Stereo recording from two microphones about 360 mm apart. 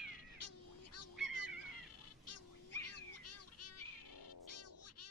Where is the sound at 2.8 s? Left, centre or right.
Left.